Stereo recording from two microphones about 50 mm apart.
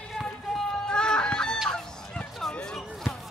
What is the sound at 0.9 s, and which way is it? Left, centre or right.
Fowl, centre.